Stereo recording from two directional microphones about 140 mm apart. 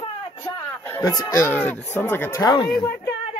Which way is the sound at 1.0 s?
25° left (ahead or behind).